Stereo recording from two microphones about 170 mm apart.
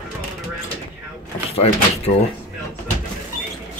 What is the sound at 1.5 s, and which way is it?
Speech, 35° left (ahead or behind).